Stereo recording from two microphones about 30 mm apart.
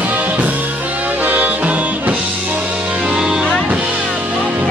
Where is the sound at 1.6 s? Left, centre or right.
Right.